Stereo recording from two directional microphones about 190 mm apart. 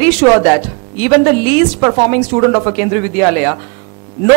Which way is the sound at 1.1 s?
30° right (ahead or behind).